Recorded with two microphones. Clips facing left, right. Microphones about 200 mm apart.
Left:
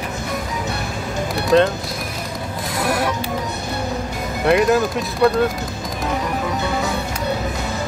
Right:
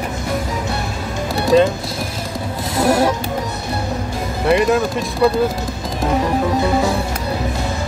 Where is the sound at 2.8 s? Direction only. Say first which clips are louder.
Right 6 dB; 30° right (ahead or behind).